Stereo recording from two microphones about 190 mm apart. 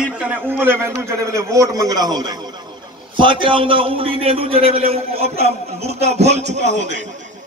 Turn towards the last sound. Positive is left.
turn(degrees=-70)  # may be behind; listen again after turning